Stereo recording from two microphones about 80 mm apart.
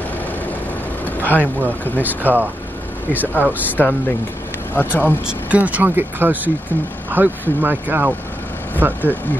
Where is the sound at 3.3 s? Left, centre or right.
Left.